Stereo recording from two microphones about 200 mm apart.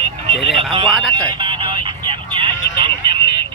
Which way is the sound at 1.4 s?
25° right (ahead or behind).